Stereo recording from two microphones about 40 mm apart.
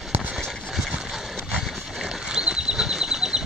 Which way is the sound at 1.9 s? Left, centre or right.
Centre.